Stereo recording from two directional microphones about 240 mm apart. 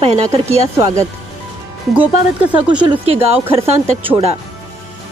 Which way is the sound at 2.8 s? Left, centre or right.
Centre.